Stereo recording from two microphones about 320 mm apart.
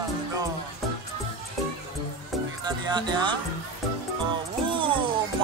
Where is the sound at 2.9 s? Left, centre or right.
Centre.